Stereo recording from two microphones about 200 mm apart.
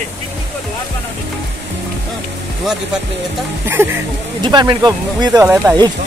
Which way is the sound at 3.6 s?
10° right (ahead or behind).